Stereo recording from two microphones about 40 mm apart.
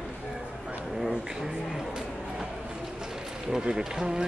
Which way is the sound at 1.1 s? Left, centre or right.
Centre.